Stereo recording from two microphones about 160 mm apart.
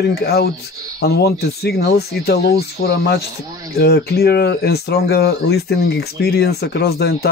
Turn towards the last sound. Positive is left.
turn(degrees=90)